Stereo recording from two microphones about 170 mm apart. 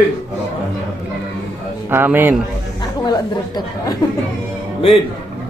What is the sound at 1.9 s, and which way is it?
Speech, 10° right (ahead or behind).